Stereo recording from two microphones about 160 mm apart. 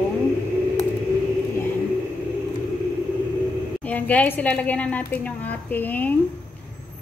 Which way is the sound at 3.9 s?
10° left (ahead or behind).